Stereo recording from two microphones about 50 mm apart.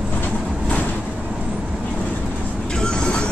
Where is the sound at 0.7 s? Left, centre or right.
Left.